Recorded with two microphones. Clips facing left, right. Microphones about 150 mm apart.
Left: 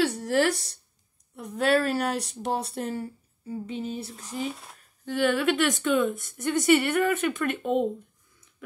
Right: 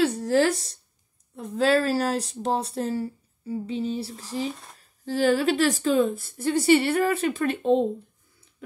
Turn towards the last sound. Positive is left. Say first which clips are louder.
# right 4 dB
turn(degrees=-30)  # may be behind; listen again after turning